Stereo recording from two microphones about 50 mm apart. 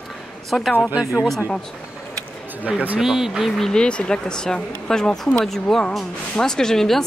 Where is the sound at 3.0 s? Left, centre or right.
Centre.